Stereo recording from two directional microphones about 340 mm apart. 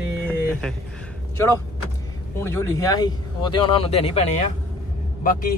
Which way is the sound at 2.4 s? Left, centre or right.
Centre.